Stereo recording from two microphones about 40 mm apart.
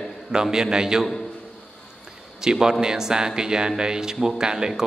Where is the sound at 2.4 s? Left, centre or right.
Centre.